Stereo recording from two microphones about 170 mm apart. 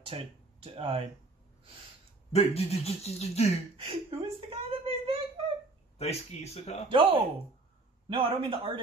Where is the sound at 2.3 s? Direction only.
35° left (ahead or behind).